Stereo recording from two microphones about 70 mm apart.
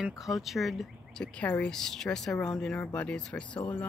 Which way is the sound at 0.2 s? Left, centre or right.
Centre.